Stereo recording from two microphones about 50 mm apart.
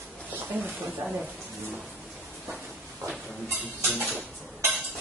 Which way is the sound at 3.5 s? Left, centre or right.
Right.